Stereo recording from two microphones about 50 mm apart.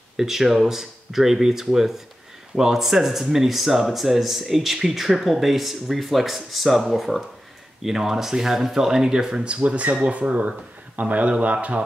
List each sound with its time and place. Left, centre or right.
0.2 s speech: centre; by 11.8 s right